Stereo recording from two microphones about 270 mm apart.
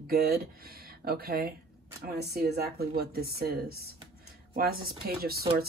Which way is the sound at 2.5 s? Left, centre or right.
Right.